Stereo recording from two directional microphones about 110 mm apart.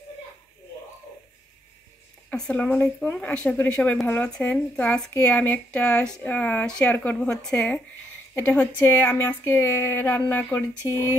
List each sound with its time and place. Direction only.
2.3 s speech: 5° left (ahead or behind)
8.4 s speech: 20° left (ahead or behind)